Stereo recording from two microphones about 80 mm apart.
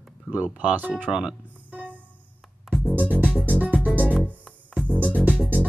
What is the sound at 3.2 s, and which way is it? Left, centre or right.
Music, centre.